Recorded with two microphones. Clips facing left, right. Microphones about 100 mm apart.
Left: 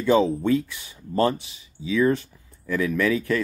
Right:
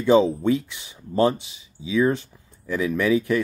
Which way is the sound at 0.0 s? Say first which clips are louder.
Right 2 dB; 20° right (ahead or behind).